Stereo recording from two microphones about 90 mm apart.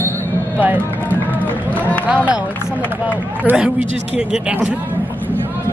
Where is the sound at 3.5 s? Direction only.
20° right (ahead or behind).